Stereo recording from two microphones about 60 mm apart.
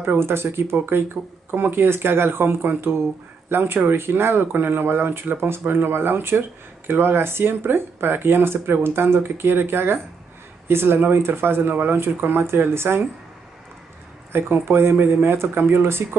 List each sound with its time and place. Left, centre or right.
0.0 s speech: right
14.3 s speech: right